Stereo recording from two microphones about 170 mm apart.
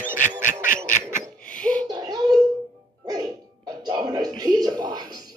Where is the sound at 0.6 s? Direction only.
50° left (ahead or behind).